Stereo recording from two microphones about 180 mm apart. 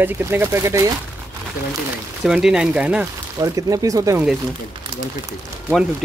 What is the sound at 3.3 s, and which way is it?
Speech, 20° right (ahead or behind).